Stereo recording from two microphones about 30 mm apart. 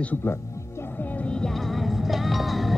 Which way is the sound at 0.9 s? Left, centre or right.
Left.